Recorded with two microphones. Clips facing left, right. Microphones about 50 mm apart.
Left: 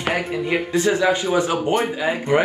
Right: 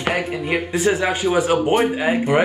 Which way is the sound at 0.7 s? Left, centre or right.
Centre.